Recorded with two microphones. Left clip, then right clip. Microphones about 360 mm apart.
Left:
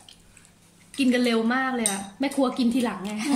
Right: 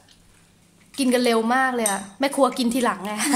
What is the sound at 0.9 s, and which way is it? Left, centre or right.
A woman's voice, centre.